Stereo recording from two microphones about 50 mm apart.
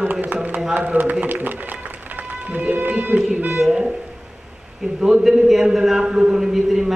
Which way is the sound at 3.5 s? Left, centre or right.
Centre.